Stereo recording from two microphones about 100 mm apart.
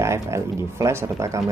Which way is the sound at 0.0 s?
25° right (ahead or behind).